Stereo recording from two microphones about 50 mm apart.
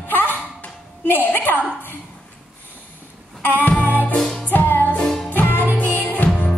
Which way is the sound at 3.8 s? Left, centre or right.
Left.